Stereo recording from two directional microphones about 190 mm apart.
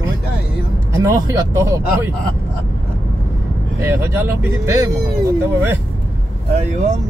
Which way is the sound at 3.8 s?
10° right (ahead or behind).